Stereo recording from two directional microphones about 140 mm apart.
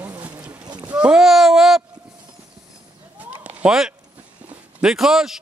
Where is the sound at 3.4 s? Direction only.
10° right (ahead or behind).